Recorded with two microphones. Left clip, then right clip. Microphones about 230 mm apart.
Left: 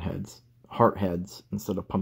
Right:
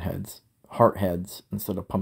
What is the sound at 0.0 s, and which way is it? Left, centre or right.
Speech, centre.